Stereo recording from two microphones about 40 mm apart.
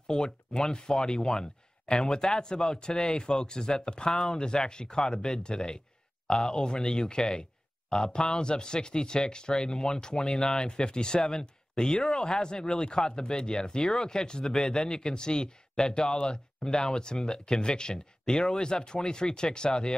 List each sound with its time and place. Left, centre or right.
0.0 s speech: centre